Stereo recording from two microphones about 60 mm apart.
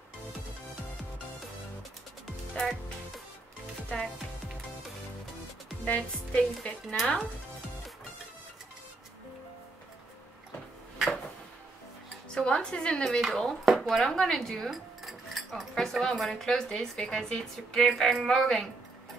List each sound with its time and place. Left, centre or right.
2.5 s speech: centre
5.9 s music: left
12.4 s speech: centre